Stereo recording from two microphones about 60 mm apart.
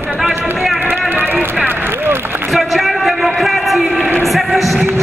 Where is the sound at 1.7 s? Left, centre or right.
Right.